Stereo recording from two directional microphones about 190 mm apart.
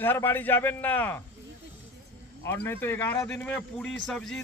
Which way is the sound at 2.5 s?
15° left (ahead or behind).